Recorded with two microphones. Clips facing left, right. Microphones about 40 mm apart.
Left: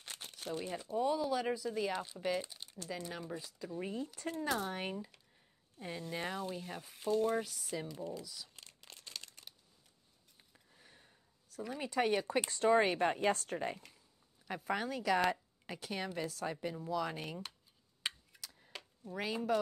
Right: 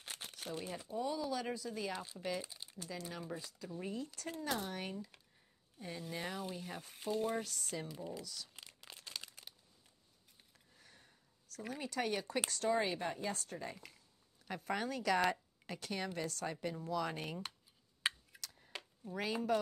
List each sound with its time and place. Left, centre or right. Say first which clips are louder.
0.0 s crumpling: left 1 dB; centre
0.6 s a woman's voice: left 4 dB; centre
0.9 s speech: left 5 dB; centre
4.3 s speech: left 4 dB; left
5.8 s a woman's voice: left 3 dB; centre
8.5 s crumpling: right 2 dB; centre
10.5 s a sound: left 2 dB; centre
11.8 s speech: left 6 dB; left
12.7 s speech: left 6 dB; left
14.5 s a woman's voice: left 2 dB; centre
18.0 s a sound: right 3 dB; centre
18.4 s a sound: even; centre
18.7 s a sound: even; centre
19.1 s a woman's voice: left 1 dB; centre